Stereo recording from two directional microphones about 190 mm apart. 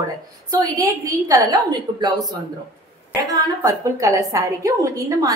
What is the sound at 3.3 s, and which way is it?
A woman's voice, 20° right (ahead or behind).